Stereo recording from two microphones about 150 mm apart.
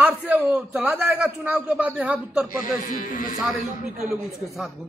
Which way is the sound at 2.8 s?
65° left (ahead or behind).